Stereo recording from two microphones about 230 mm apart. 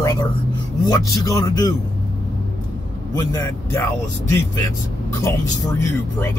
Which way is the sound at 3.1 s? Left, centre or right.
Centre.